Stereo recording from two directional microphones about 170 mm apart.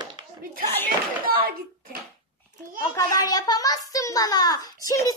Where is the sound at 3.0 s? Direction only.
20° left (ahead or behind).